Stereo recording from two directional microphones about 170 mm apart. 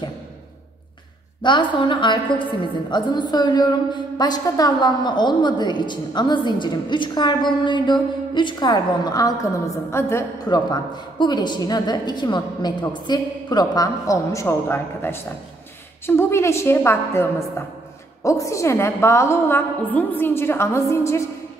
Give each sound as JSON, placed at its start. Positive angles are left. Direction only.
{"t": 1.4, "sound": "a woman's voice", "side_deg": 30}